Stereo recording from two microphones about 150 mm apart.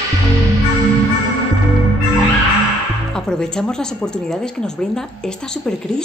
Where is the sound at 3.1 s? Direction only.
5° left (ahead or behind).